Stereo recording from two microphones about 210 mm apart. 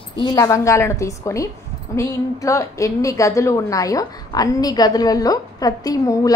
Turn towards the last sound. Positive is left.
turn(degrees=15)  # may be behind; listen again after turning